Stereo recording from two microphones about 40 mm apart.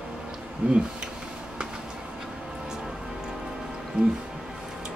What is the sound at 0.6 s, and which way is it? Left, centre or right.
Speech, right.